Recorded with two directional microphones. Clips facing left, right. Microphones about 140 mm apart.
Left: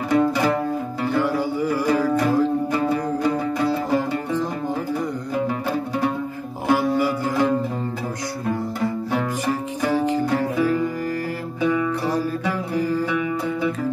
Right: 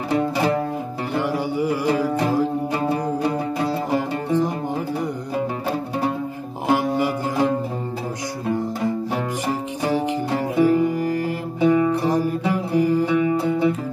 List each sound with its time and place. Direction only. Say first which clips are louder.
0.1 s music: left 1 dB; 25° right (ahead or behind)
2.7 s music: even; 30° right (ahead or behind)
6.7 s music: left 1 dB; 20° right (ahead or behind)
11.6 s music: right 4 dB; 30° right (ahead or behind)
12.0 s music: right 2 dB; 15° right (ahead or behind)